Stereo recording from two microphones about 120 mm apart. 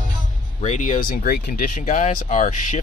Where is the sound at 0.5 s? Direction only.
80° left.